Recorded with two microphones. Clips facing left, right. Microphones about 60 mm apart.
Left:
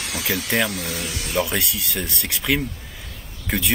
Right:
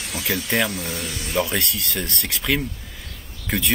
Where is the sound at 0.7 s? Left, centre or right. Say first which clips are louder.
Left 1 dB; left.